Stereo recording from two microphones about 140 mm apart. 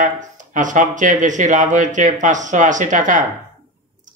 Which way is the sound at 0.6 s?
65° right (ahead or behind).